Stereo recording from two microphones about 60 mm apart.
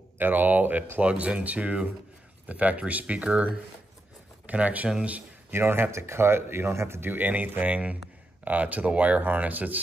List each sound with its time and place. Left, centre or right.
0.2 s speech: right
4.8 s speech: centre
5.5 s speech: right